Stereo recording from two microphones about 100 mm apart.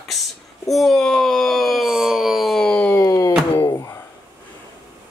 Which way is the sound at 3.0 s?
35° left (ahead or behind).